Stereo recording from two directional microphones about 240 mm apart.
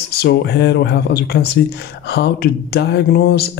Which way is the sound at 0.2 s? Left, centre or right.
Left.